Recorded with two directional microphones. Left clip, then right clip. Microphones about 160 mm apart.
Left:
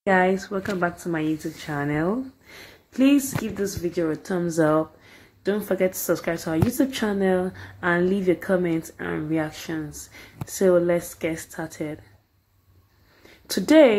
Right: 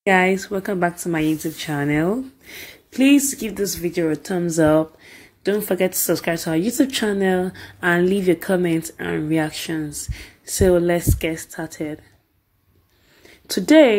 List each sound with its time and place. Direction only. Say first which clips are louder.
0.0 s a woman's voice: right 3 dB; 20° right (ahead or behind)
0.7 s a woman's voice: right 4 dB; 30° right (ahead or behind)
13.5 s a woman's voice: right 2 dB; 15° right (ahead or behind)